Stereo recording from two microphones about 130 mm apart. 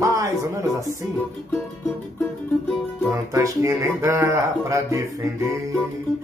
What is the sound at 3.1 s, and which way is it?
Speech, 25° right (ahead or behind).